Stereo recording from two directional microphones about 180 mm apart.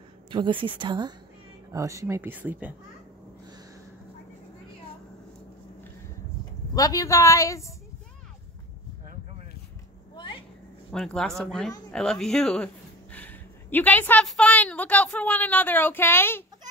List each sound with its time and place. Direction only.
0.3 s a woman's voice: 25° right (ahead or behind); by 2.7 s 10° right (ahead or behind)
6.7 s a woman's voice: 20° left (ahead or behind)
10.1 s a sound: 25° left (ahead or behind)
10.9 s a woman's voice: 5° left (ahead or behind)